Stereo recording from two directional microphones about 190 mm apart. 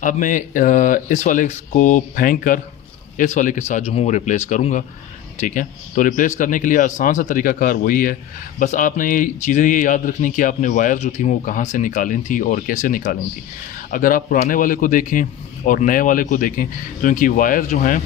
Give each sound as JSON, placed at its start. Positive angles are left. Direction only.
{"t": 0.0, "sound": "speech", "side_deg": 45}